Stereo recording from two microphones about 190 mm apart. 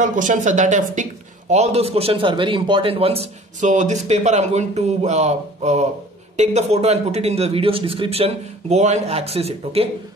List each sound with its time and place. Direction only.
0.0 s a man's voice: 40° right (ahead or behind)